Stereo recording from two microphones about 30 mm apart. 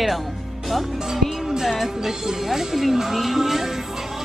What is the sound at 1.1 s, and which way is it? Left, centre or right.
Speech, centre.